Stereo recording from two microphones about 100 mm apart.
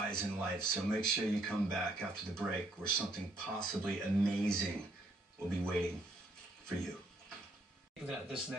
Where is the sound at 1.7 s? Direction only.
5° left (ahead or behind).